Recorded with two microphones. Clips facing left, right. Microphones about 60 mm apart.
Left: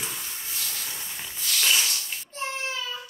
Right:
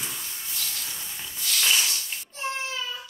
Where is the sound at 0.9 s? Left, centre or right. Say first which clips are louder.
Left 1 dB; left.